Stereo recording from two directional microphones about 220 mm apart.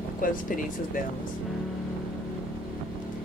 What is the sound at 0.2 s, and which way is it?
Speech, 40° left (ahead or behind).